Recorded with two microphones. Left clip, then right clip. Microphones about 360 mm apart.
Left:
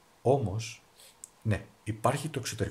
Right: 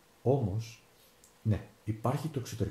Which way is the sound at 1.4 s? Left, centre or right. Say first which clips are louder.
Left 3 dB; left.